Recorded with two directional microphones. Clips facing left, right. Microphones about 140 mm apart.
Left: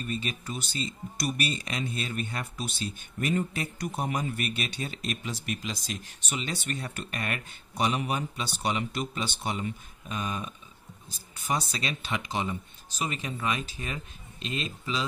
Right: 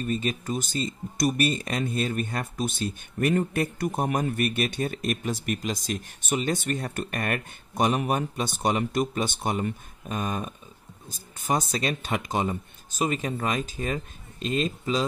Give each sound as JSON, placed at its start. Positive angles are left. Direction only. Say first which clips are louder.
{"t": 0.0, "sound": "speech", "louder": "right 6 dB", "side_deg": -45}